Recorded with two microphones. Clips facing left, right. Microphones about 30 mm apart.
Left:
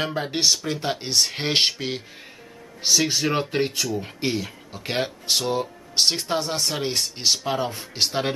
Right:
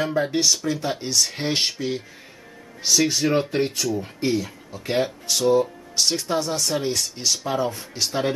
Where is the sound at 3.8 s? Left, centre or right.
Centre.